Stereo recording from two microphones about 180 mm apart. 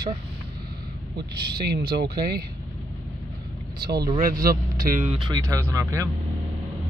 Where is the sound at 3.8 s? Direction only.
60° right (ahead or behind).